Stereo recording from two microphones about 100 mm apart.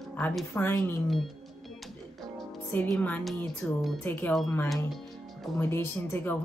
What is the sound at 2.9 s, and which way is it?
Speech, 15° left (ahead or behind).